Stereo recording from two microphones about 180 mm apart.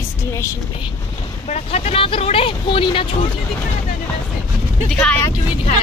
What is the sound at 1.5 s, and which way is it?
Speech, 40° left (ahead or behind).